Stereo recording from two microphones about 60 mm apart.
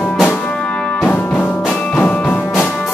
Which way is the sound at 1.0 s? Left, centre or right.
Left.